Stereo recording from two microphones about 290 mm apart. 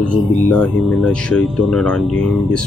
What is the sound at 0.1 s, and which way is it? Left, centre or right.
Speech, centre.